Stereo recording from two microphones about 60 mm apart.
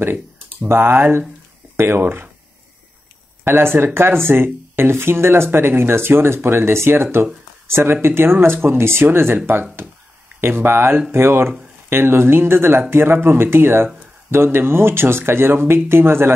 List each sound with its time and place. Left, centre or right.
0.7 s speech: right
3.4 s speech: right
10.4 s speech: right